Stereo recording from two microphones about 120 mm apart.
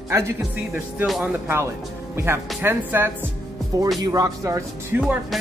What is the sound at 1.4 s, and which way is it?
Speech, 20° right (ahead or behind).